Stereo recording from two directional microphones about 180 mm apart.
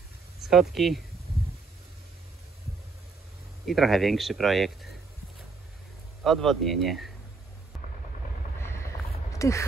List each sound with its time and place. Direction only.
0.4 s speech: centre (ahead or behind)
3.6 s speech: centre (ahead or behind)
6.2 s speech: centre (ahead or behind)
9.3 s speech: 15° left (ahead or behind)